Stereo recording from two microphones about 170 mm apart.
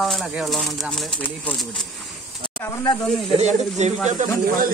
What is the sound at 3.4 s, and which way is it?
Speech, 40° right (ahead or behind).